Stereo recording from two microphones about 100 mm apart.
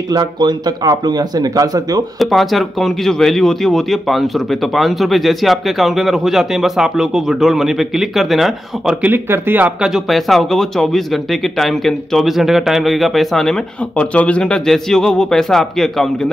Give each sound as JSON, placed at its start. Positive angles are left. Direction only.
{"t": 0.1, "sound": "speech", "side_deg": -45}
{"t": 2.1, "sound": "speech", "side_deg": 0}
{"t": 9.0, "sound": "speech", "side_deg": -20}
{"t": 9.8, "sound": "speech", "side_deg": 0}